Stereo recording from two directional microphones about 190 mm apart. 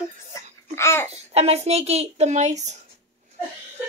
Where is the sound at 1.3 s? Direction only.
35° right (ahead or behind).